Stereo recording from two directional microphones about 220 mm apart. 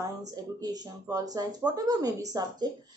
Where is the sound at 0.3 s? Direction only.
15° right (ahead or behind).